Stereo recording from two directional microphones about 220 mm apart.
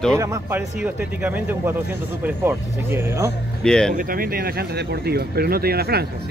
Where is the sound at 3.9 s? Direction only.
40° right (ahead or behind).